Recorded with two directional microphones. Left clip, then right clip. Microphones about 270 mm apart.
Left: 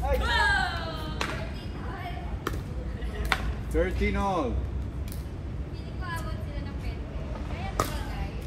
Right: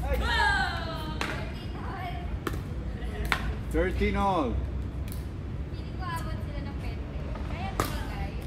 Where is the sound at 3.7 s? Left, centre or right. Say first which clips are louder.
Even; right.